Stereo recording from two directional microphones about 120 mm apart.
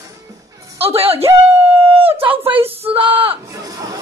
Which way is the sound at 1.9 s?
50° right (ahead or behind).